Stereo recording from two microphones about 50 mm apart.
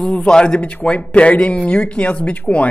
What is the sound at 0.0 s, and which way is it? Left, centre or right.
Speech, centre.